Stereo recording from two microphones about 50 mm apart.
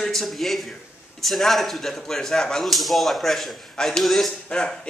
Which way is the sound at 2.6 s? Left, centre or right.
Centre.